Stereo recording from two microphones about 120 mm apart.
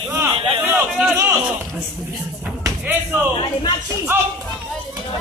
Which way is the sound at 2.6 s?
15° right (ahead or behind).